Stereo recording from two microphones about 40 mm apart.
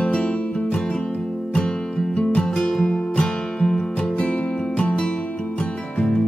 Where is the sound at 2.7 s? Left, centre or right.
Centre.